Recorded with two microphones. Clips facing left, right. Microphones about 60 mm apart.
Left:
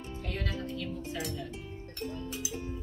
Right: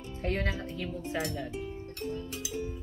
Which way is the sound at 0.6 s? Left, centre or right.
Right.